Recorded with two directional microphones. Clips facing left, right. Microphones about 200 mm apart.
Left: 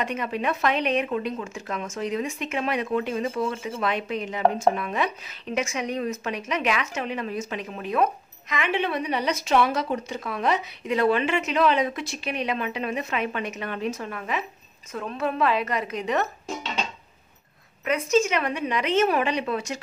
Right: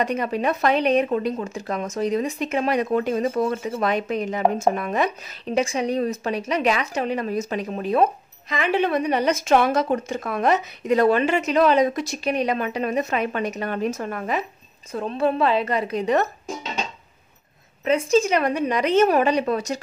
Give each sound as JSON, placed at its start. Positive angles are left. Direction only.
{"t": 0.0, "sound": "speech", "side_deg": -40}
{"t": 14.9, "sound": "speech", "side_deg": -30}
{"t": 17.8, "sound": "speech", "side_deg": -30}